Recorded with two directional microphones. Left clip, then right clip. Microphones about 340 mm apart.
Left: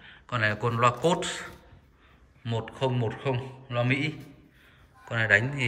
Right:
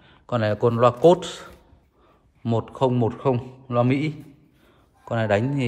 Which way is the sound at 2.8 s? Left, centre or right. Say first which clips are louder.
Right 7 dB; centre.